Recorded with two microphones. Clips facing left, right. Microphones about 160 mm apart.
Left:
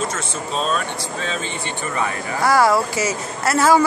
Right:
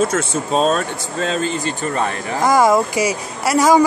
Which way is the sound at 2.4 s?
20° right (ahead or behind).